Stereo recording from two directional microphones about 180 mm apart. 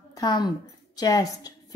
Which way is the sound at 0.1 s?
20° left (ahead or behind).